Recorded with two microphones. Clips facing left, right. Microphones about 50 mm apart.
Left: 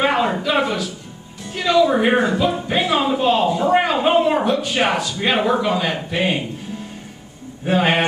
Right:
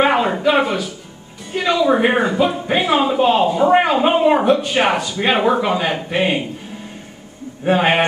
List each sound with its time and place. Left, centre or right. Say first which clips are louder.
0.0 s a sound: right 3 dB; centre
0.6 s music: right 2 dB; centre
2.0 s a man's voice: right 1 dB; centre
7.6 s speech: right 2 dB; centre